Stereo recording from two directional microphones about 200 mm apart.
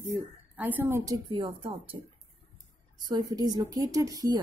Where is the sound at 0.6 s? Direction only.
10° right (ahead or behind).